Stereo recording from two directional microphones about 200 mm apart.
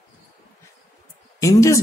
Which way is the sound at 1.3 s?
15° left (ahead or behind).